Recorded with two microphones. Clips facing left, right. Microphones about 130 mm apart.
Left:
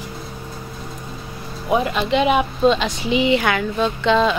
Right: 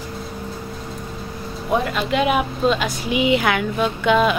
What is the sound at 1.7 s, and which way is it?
A woman's voice, 5° left (ahead or behind).